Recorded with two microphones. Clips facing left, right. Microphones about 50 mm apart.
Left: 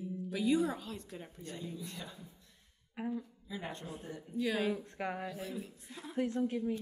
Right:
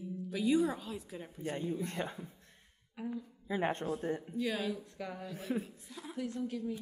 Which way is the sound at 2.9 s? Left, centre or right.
Left.